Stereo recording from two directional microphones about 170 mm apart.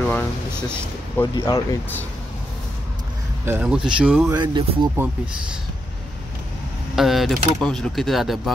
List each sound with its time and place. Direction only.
0.1 s speech: 10° left (ahead or behind)
3.4 s speech: 10° right (ahead or behind)
4.3 s speech: 25° right (ahead or behind)
7.0 s speech: centre (ahead or behind)